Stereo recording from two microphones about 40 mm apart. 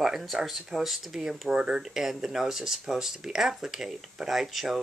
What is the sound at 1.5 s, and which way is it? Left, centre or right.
Speech, right.